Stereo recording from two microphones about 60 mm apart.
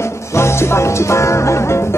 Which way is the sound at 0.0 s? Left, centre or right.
Left.